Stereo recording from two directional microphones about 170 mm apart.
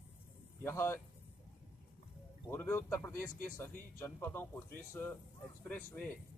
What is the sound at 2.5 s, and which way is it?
Speech, 15° left (ahead or behind).